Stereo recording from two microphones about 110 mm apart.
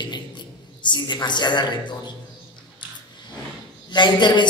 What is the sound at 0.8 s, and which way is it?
A man's voice, 45° left (ahead or behind).